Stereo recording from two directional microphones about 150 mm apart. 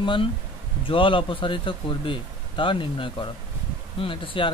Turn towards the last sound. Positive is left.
turn(degrees=35)  # may be behind; listen again after turning